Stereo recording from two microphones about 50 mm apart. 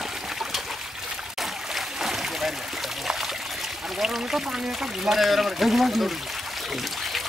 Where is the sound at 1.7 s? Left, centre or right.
Centre.